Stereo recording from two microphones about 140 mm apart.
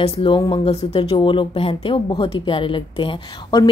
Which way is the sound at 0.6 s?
50° left (ahead or behind).